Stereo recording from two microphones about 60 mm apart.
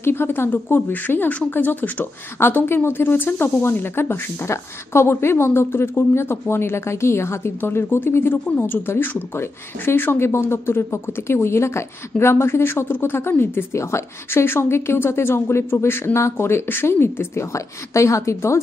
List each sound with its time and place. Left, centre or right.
0.0 s a woman's voice: left